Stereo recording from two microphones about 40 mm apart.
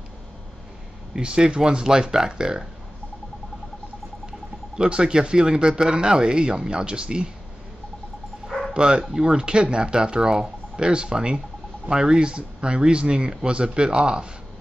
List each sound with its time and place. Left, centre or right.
1.1 s speech: right
4.7 s speech: right
8.5 s dog: centre
8.7 s speech: right